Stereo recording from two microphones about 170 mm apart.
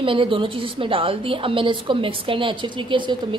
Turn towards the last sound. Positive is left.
turn(degrees=-30)  # may be behind; listen again after turning